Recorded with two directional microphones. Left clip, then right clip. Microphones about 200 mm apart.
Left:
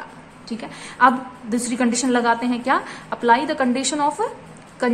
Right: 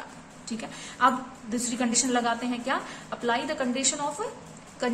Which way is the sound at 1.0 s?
20° left (ahead or behind).